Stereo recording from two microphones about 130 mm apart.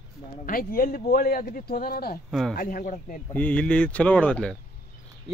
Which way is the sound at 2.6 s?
90° left.